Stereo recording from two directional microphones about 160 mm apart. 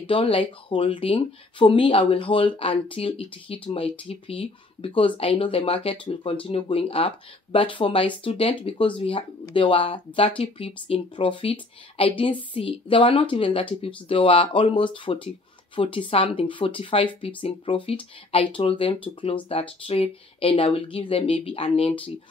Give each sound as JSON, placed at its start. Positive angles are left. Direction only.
{"t": 0.0, "sound": "speech", "side_deg": 35}